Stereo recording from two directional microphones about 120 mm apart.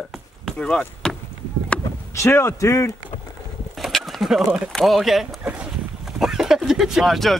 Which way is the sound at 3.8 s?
Centre (ahead or behind).